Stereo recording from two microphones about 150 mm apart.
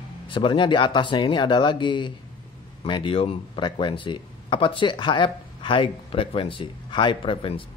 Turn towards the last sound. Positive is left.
turn(degrees=35)  # may be behind; listen again after turning